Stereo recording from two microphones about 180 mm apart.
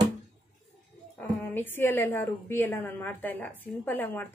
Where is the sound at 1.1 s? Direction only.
10° left (ahead or behind).